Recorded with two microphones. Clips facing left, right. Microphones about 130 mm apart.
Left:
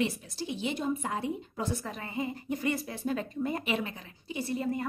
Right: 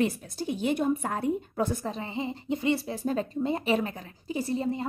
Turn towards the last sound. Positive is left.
turn(degrees=-30)  # may be behind; listen again after turning